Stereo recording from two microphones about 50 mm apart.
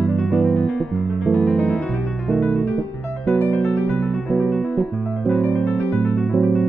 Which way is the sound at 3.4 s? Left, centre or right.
Left.